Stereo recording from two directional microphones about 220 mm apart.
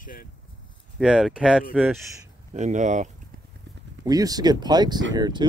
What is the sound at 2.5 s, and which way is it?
Speech, 35° right (ahead or behind).